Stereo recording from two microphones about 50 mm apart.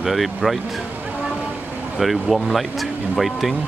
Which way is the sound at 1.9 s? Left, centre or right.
Centre.